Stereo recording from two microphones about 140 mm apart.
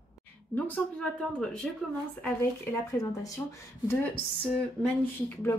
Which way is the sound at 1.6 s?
5° left (ahead or behind).